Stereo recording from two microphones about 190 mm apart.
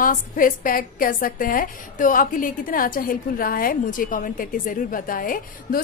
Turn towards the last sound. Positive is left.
turn(degrees=50)  # may be behind; listen again after turning